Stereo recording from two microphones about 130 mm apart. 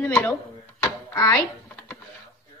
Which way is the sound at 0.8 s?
25° left (ahead or behind).